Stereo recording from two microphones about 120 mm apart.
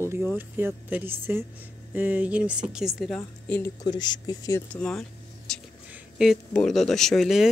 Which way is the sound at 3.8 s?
35° left (ahead or behind).